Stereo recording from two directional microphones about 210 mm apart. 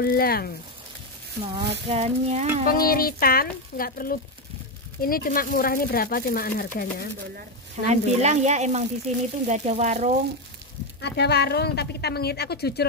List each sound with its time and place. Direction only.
0.0 s speech: 45° left (ahead or behind)
1.4 s a sound: 25° right (ahead or behind)
2.6 s speech: 45° left (ahead or behind)
7.8 s speech: 30° right (ahead or behind)
11.0 s speech: 55° left (ahead or behind)